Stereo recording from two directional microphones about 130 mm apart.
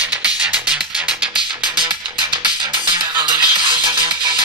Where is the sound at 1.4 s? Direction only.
40° right (ahead or behind).